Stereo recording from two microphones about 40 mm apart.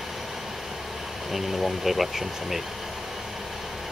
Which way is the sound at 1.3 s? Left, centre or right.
Centre.